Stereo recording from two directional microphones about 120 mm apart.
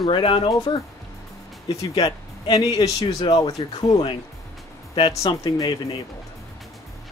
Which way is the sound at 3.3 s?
55° left (ahead or behind).